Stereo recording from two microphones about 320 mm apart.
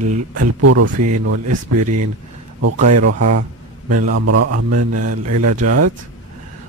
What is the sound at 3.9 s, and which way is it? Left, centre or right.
Speech, right.